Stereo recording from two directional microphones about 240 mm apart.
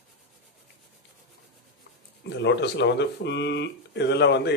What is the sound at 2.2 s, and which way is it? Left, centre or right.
Speech, left.